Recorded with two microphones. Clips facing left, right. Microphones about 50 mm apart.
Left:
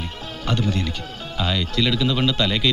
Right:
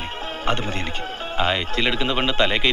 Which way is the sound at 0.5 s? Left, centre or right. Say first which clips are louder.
Left 1 dB; right.